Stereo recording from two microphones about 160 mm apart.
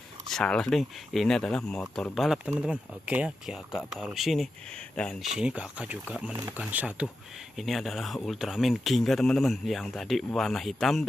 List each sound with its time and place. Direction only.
0.3 s speech: 5° left (ahead or behind)
6.3 s speech: 20° right (ahead or behind); by 11.1 s centre (ahead or behind)